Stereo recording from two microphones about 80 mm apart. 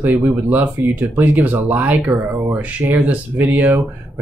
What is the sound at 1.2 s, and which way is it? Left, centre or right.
Speech, right.